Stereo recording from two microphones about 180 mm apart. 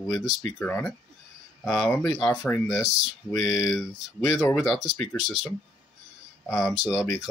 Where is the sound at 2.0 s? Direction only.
5° left (ahead or behind).